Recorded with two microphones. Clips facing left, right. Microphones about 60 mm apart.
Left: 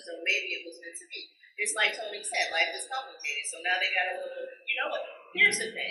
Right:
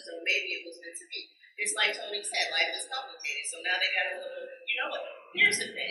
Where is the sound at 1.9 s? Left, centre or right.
Centre.